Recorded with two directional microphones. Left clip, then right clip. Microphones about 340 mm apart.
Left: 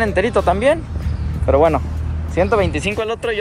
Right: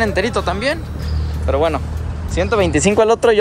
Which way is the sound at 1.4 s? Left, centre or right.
Centre.